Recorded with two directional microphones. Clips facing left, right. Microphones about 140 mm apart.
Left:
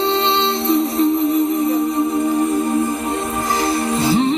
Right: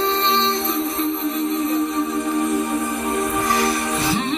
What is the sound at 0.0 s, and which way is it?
Music, 30° left (ahead or behind).